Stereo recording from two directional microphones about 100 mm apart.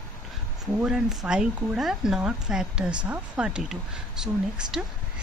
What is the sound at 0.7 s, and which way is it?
Speech, 5° right (ahead or behind).